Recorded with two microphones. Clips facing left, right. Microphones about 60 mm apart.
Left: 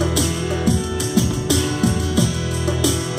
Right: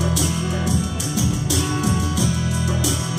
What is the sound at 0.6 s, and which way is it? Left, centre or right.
Music, left.